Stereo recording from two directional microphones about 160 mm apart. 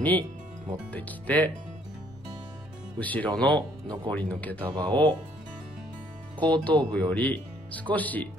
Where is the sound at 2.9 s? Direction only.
10° left (ahead or behind).